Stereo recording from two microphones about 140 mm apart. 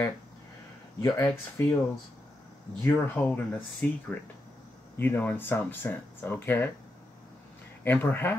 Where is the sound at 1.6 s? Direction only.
20° left (ahead or behind).